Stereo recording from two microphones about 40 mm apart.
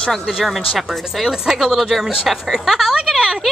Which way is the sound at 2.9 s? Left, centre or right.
Right.